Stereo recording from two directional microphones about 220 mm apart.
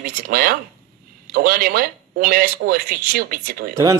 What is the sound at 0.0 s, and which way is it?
Speech, 40° right (ahead or behind).